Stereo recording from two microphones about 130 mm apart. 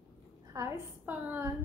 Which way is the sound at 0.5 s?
20° right (ahead or behind).